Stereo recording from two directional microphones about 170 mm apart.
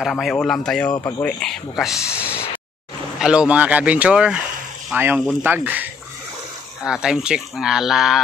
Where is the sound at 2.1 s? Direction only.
10° right (ahead or behind).